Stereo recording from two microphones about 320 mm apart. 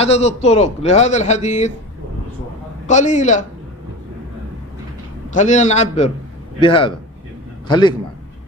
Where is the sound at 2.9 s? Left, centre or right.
Left.